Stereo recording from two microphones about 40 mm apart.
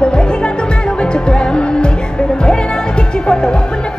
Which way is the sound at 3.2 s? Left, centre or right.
Left.